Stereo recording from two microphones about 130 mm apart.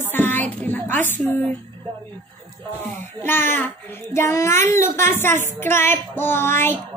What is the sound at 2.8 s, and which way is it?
Child singing, 15° left (ahead or behind).